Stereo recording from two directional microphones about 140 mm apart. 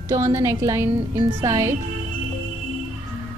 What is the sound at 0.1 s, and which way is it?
A woman's voice, 25° right (ahead or behind).